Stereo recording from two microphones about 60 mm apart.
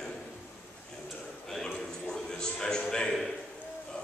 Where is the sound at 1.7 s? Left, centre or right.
Centre.